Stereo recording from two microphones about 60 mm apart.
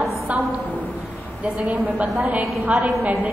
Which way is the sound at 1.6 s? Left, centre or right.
Right.